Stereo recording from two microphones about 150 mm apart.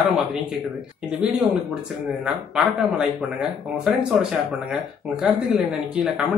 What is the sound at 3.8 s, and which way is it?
Speech, 5° right (ahead or behind).